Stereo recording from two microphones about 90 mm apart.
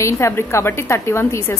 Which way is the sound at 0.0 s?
30° left (ahead or behind).